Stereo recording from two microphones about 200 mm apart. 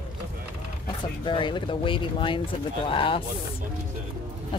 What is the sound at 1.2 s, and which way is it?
Speech, 25° left (ahead or behind).